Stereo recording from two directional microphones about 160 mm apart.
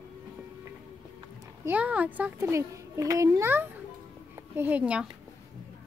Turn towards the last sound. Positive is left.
turn(degrees=-5)  # may be behind; listen again after turning